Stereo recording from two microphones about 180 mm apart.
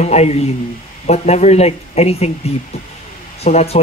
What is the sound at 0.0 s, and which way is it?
Speech, 35° left (ahead or behind).